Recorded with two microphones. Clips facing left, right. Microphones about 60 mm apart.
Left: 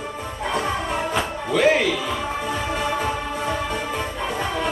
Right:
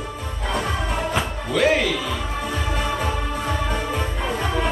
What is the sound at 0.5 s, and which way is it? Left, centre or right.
Music, centre.